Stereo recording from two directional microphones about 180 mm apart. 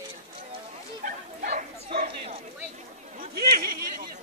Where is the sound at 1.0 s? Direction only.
50° right (ahead or behind).